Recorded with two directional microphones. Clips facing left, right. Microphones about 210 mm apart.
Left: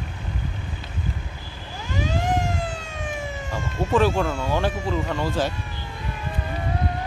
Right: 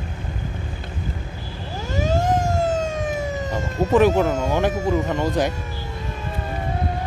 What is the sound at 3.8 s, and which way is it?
Speech, 40° right (ahead or behind).